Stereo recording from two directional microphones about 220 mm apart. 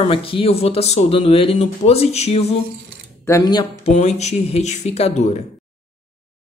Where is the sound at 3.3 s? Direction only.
15° left (ahead or behind).